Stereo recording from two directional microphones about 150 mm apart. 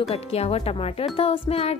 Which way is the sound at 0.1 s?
40° left (ahead or behind).